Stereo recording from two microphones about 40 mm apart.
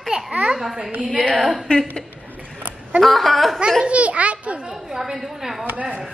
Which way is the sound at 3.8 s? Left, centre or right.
Right.